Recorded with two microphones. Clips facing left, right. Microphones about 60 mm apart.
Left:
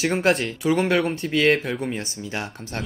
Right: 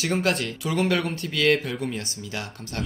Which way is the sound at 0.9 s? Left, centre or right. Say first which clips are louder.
Left 4 dB; left.